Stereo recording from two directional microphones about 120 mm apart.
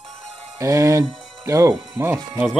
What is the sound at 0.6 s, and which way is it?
Speech, 25° right (ahead or behind).